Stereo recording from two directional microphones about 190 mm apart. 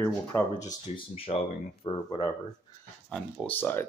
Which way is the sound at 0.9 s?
30° left (ahead or behind).